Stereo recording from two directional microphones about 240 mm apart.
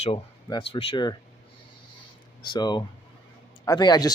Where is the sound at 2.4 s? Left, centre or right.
Centre.